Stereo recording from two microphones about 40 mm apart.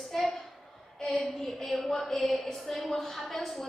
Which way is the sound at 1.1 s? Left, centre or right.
Left.